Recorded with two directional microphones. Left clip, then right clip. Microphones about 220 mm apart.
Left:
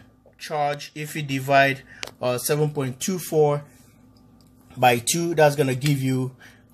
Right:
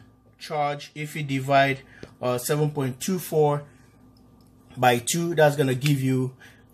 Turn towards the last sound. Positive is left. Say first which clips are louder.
# even
turn(degrees=10)  # may be behind; listen again after turning